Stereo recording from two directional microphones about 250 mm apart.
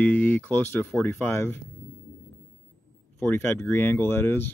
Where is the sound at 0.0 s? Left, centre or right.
Centre.